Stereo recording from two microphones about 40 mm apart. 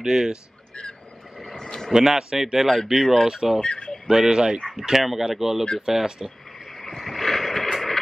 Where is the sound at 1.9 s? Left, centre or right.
Centre.